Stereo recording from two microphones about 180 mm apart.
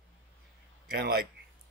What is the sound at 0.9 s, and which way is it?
Speech, 60° right (ahead or behind).